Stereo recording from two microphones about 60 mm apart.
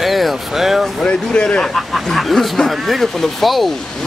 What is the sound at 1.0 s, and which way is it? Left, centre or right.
Speech, centre.